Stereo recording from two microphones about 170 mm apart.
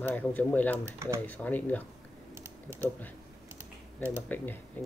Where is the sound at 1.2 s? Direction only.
10° left (ahead or behind).